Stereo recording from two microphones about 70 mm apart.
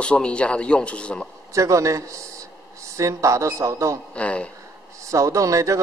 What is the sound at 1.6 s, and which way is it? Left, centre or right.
A man's voice, right.